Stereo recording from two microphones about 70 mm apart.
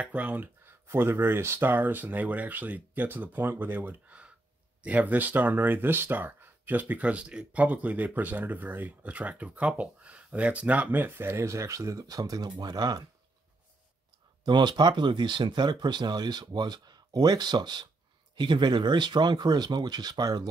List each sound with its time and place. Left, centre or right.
0.0 s speech: right
11.4 s speech: right
14.4 s speech: right